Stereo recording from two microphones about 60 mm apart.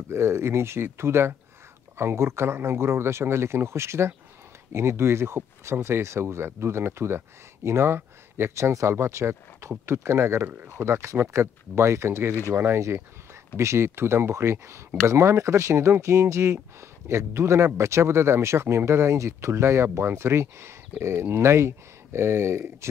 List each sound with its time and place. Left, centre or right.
0.1 s speech: right
10.7 s speech: right